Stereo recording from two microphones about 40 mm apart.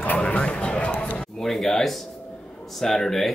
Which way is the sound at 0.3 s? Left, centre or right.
Left.